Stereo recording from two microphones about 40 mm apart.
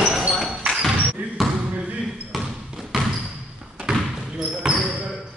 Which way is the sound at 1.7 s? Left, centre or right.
Right.